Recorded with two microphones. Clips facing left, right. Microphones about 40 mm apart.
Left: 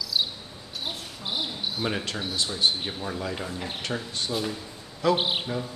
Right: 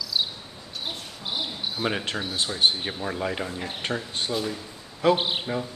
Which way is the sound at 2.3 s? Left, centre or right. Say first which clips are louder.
Right 2 dB; right.